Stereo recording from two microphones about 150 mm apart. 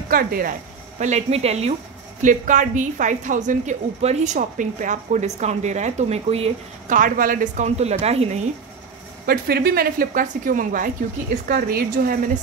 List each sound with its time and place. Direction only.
0.1 s speech: 75° right (ahead or behind); by 1.8 s 45° right (ahead or behind)
2.2 s a woman's voice: 55° right (ahead or behind)
6.9 s a woman's voice: 65° right (ahead or behind); by 8.4 s 45° right (ahead or behind)
9.2 s a woman's voice: 85° right; by 10.9 s 65° right (ahead or behind)
11.4 s a woman's voice: 85° right